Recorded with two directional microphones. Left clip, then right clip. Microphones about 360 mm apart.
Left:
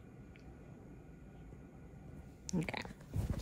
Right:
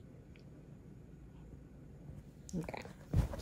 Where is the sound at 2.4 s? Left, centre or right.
Left.